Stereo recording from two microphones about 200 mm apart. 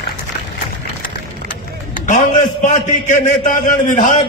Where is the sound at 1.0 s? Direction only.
45° left (ahead or behind).